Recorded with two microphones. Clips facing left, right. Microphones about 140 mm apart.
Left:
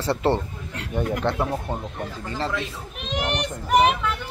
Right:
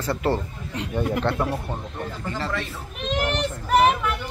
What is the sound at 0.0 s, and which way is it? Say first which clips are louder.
Speech: left 2 dB; 25° left (ahead or behind).